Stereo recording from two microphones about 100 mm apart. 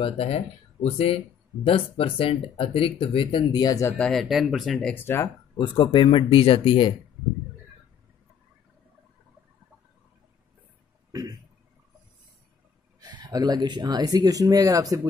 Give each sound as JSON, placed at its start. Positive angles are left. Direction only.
{"t": 0.0, "sound": "speech", "side_deg": 75}
{"t": 0.8, "sound": "speech", "side_deg": 90}
{"t": 1.7, "sound": "speech", "side_deg": 65}
{"t": 3.5, "sound": "speech", "side_deg": 40}
{"t": 4.0, "sound": "speech", "side_deg": 0}
{"t": 4.9, "sound": "speech", "side_deg": 25}
{"t": 5.6, "sound": "speech", "side_deg": 55}
{"t": 11.1, "sound": "throat clearing", "side_deg": -35}
{"t": 13.0, "sound": "speech", "side_deg": -45}